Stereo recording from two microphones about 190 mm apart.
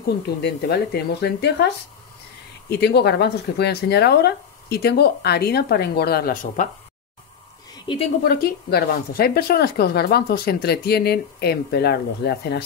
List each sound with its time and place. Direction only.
0.4 s speech: 60° left (ahead or behind)
2.8 s speech: 60° left (ahead or behind); by 6.7 s 40° left (ahead or behind)
7.9 s a woman's voice: 25° left (ahead or behind)
8.2 s speech: 55° left (ahead or behind)